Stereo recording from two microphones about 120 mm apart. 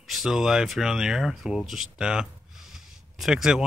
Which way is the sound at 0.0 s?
Centre (ahead or behind).